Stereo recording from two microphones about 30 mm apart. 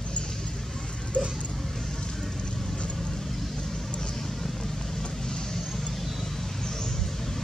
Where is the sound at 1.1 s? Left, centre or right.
Left.